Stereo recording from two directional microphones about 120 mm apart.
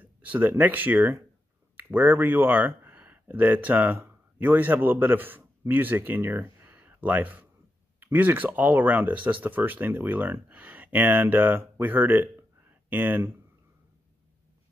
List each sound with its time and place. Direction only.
0.0 s speech: 15° right (ahead or behind)